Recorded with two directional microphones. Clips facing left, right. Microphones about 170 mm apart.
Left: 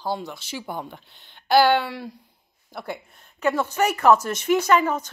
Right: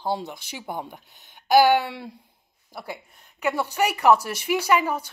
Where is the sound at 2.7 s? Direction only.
10° right (ahead or behind).